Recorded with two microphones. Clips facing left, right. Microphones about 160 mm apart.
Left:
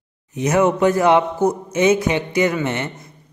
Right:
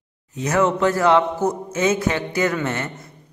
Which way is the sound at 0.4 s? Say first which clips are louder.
Left 3 dB; 20° left (ahead or behind).